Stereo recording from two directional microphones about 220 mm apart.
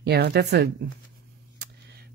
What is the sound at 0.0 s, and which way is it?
Speech, 50° right (ahead or behind).